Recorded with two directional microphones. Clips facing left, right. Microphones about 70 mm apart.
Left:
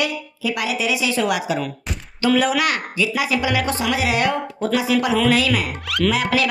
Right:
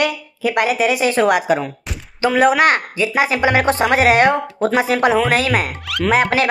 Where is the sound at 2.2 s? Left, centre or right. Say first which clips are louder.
Right 4 dB; right.